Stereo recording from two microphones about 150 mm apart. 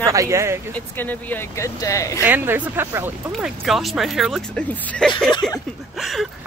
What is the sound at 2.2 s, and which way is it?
Speech, 10° right (ahead or behind).